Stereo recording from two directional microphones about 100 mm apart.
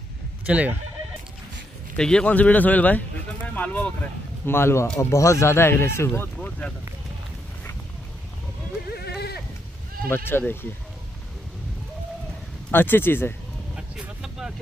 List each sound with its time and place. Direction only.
0.5 s speech: 15° right (ahead or behind)
2.0 s speech: 10° left (ahead or behind)
4.6 s speech: 25° left (ahead or behind)
6.3 s speech: 10° left (ahead or behind)
10.0 s speech: 20° left (ahead or behind)
12.7 s speech: 20° left (ahead or behind)
13.7 s vehicle: 5° right (ahead or behind)